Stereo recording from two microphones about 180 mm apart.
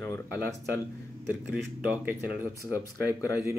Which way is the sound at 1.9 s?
10° right (ahead or behind).